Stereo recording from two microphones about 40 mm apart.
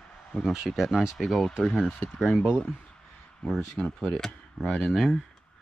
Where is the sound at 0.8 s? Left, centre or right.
Centre.